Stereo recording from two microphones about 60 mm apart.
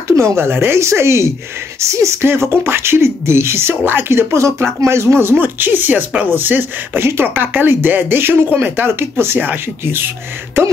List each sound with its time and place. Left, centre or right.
0.1 s speech: right
2.2 s speech: right